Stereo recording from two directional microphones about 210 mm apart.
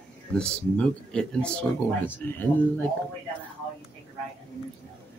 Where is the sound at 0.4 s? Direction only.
5° left (ahead or behind).